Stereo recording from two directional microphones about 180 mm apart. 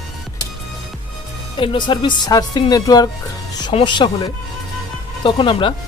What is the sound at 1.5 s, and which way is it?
Speech, 25° left (ahead or behind).